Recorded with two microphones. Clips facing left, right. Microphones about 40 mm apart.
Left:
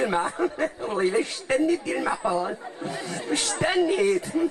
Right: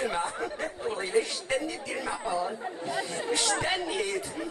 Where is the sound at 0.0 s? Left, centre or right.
Left.